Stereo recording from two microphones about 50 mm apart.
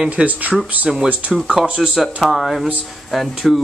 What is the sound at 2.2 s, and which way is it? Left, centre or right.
Speech, centre.